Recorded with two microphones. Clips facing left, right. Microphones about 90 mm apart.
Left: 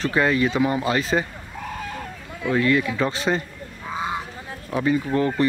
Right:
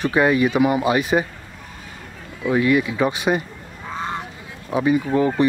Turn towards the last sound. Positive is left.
turn(degrees=-15)  # may be behind; listen again after turning